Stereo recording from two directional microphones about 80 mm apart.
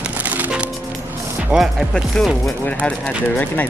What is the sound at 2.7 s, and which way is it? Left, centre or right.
Speech, centre.